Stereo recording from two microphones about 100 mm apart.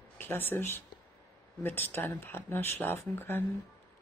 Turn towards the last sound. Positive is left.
turn(degrees=25)  # may be behind; listen again after turning